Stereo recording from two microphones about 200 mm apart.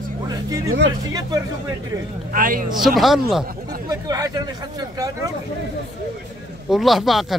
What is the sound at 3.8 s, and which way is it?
Speech, 20° right (ahead or behind).